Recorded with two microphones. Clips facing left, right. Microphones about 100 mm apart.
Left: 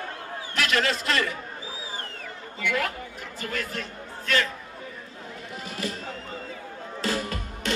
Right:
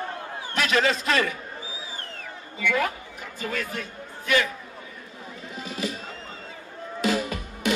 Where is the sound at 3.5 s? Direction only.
15° right (ahead or behind).